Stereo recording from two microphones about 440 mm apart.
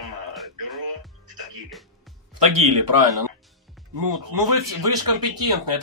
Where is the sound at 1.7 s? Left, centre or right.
Centre.